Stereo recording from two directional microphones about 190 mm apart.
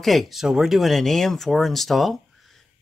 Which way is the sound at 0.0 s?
Centre (ahead or behind).